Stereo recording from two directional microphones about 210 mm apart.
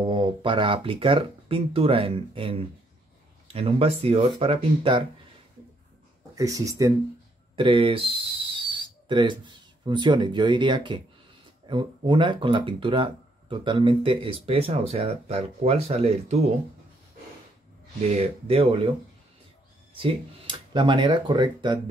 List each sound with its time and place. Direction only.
0.0 s speech: 20° right (ahead or behind)
6.3 s speech: 15° right (ahead or behind)
18.1 s speech: 25° right (ahead or behind)
20.0 s speech: 25° right (ahead or behind)